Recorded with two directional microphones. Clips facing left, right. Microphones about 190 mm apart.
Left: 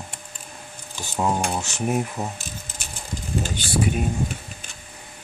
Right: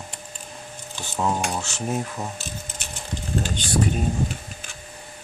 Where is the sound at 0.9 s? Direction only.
15° left (ahead or behind).